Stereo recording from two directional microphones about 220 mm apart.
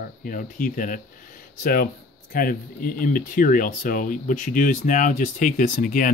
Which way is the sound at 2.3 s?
40° left (ahead or behind).